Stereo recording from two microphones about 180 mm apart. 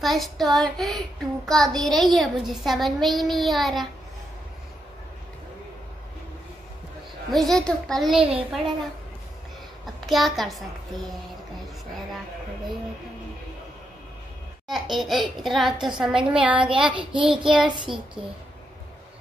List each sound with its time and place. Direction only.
0.0 s child singing: centre (ahead or behind)
7.2 s child singing: centre (ahead or behind)
9.9 s child singing: centre (ahead or behind)
14.7 s child singing: centre (ahead or behind)
16.5 s child singing: 30° right (ahead or behind)
17.5 s child singing: 5° right (ahead or behind)
17.7 s child singing: 25° right (ahead or behind)